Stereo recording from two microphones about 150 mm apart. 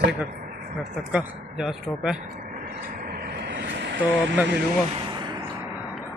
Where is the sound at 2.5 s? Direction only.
70° right (ahead or behind); by 3.4 s 90° right.